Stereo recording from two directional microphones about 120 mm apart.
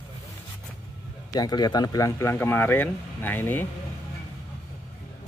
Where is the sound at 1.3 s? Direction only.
35° left (ahead or behind); by 3.6 s 15° left (ahead or behind).